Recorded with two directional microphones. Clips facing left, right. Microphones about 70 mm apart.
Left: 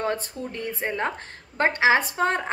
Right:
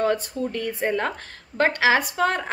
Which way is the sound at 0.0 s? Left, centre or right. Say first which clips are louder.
Right 5 dB; left.